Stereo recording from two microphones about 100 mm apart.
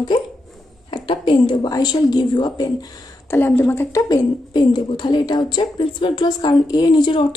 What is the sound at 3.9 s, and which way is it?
A woman's voice, 35° left (ahead or behind).